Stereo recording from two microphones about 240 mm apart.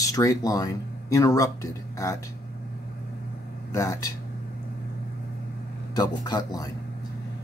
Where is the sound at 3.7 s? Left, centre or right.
Centre.